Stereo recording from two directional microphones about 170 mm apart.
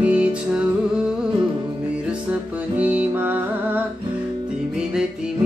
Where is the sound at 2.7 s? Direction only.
10° right (ahead or behind).